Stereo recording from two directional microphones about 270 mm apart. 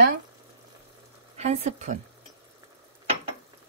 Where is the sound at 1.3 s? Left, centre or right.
Right.